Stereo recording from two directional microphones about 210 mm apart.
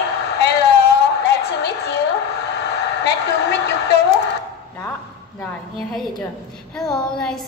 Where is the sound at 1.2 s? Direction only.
55° left (ahead or behind).